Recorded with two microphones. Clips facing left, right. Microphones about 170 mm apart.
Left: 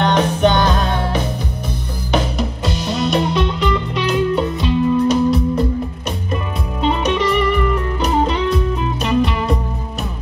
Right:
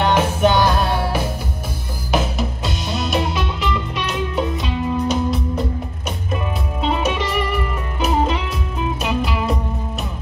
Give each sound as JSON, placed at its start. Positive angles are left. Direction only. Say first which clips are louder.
{"t": 0.0, "sound": "music", "louder": "left 2 dB", "side_deg": -5}